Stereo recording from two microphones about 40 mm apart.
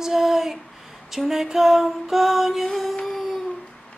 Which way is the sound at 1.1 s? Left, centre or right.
Centre.